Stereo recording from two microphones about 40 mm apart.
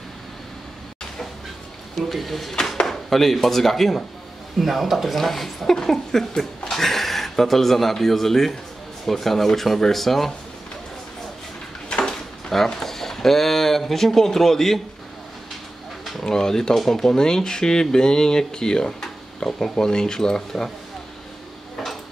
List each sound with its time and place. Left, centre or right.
2.0 s speech: centre
12.0 s drawer open or close: centre
12.6 s speech: centre
16.3 s speech: centre